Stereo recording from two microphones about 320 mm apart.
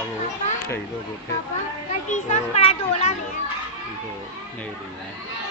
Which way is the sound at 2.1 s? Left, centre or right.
Centre.